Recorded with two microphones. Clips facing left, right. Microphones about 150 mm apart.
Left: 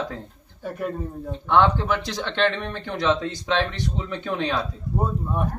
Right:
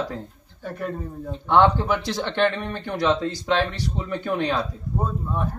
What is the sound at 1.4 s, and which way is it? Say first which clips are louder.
Speech: right 1 dB; 15° right (ahead or behind).